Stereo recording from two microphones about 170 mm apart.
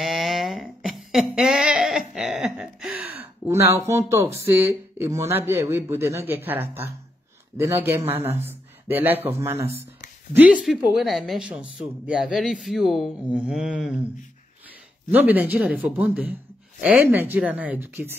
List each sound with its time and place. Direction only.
0.0 s a sound: centre (ahead or behind)
4.1 s a man's voice: 15° right (ahead or behind)
15.0 s a man's voice: 10° right (ahead or behind)